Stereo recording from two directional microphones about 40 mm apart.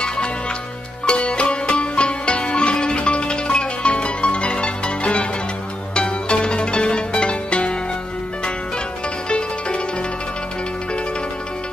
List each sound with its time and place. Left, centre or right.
1.0 s music: left
5.9 s zither: left